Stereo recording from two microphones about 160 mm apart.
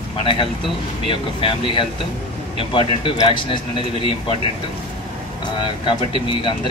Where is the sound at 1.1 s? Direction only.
35° left (ahead or behind).